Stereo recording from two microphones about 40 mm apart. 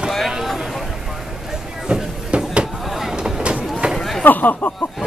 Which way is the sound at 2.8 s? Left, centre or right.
Centre.